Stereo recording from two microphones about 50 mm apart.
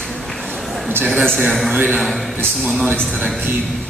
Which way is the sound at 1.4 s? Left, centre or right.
Centre.